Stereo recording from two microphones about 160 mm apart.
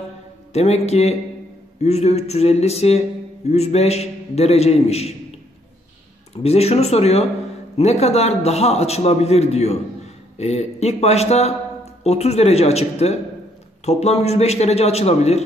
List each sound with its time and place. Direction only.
0.5 s a man's voice: 40° left (ahead or behind)
6.3 s speech: 40° left (ahead or behind)